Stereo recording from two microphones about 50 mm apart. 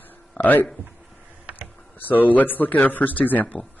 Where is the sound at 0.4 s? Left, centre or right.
Left.